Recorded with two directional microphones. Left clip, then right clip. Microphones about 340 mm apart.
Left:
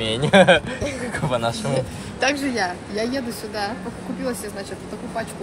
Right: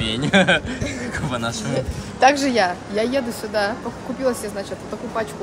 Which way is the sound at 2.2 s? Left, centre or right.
Right.